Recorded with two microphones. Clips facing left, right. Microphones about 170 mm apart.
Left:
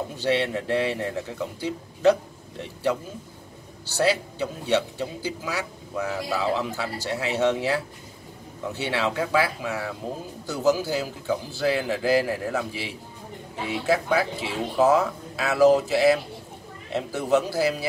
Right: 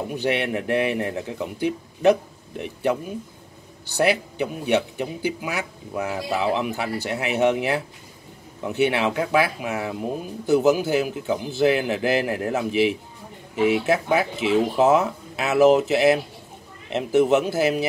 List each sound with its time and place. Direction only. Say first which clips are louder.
0.1 s a man's voice: even; 15° right (ahead or behind)